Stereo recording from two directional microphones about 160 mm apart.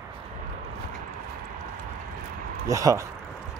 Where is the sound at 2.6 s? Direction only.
20° right (ahead or behind).